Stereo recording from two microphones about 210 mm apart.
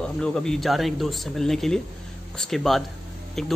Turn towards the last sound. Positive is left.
turn(degrees=0)  # may be behind; listen again after turning